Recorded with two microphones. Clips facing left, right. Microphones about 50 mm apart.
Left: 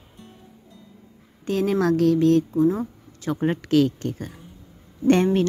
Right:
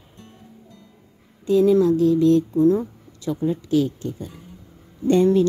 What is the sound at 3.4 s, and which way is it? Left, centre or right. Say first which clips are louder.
A woman's voice: left 1 dB; left.